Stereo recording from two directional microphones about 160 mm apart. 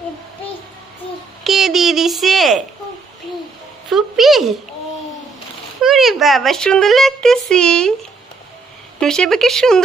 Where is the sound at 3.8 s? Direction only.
Centre (ahead or behind).